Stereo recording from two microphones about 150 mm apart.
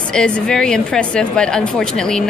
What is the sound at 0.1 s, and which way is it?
A woman's voice, 5° left (ahead or behind).